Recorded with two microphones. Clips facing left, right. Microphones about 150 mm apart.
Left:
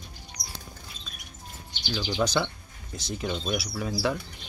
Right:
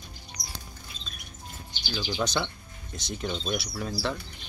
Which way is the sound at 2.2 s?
5° left (ahead or behind).